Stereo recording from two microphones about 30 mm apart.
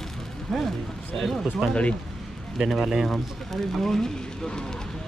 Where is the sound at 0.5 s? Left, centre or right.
Centre.